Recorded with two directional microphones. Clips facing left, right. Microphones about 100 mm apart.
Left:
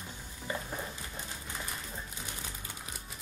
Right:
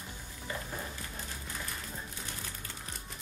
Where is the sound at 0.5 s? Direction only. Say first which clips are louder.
Left 3 dB; 20° left (ahead or behind).